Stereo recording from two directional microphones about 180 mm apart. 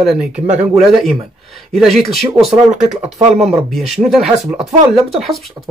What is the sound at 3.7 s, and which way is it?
Speech, centre (ahead or behind).